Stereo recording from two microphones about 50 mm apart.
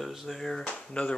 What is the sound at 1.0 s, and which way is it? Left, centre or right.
Speech, left.